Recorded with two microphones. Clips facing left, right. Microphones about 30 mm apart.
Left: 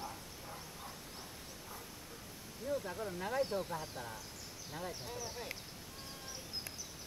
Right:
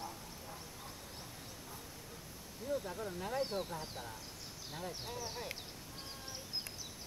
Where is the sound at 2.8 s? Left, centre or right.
Centre.